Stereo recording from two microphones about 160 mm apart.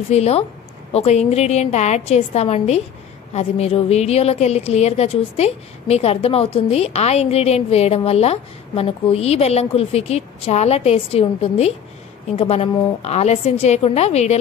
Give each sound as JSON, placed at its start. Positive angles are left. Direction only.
{"t": 0.1, "sound": "a woman's voice", "side_deg": 40}